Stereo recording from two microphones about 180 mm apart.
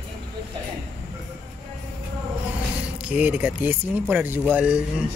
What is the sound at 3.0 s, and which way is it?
Speech, 5° right (ahead or behind).